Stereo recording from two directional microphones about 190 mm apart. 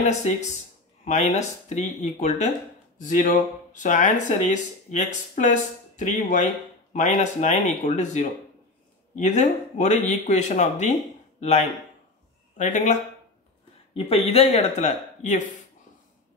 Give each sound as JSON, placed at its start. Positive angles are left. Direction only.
{"t": 0.0, "sound": "speech", "side_deg": 35}
{"t": 13.9, "sound": "speech", "side_deg": 30}